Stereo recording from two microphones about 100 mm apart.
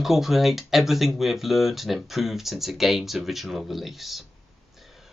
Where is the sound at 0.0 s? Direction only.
5° right (ahead or behind).